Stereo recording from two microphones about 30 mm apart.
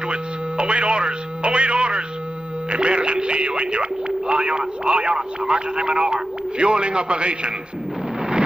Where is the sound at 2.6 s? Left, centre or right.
Right.